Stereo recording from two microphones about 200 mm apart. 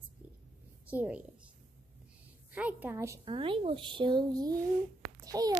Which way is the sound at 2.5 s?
10° right (ahead or behind).